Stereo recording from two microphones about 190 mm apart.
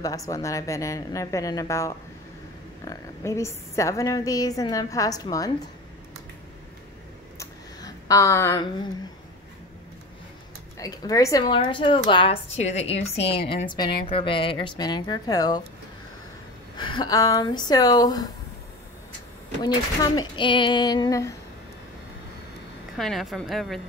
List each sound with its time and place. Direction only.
0.0 s a woman's voice: 15° left (ahead or behind)
7.3 s a sound: 15° left (ahead or behind)
10.8 s a woman's voice: 20° left (ahead or behind)
16.7 s a woman's voice: 25° left (ahead or behind)
19.6 s a woman's voice: 20° left (ahead or behind)
22.9 s a woman's voice: centre (ahead or behind)